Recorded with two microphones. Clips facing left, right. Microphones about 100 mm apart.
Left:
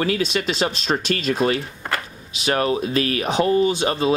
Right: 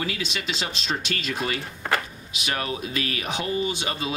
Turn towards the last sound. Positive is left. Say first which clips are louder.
# left 8 dB
turn(degrees=35)  # may be behind; listen again after turning